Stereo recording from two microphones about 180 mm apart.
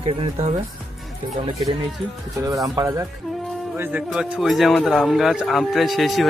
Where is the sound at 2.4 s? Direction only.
20° right (ahead or behind); by 6.3 s centre (ahead or behind).